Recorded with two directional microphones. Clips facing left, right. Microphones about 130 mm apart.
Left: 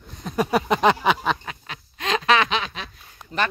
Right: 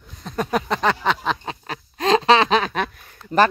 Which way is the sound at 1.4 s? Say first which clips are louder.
Right 6 dB; 35° right (ahead or behind).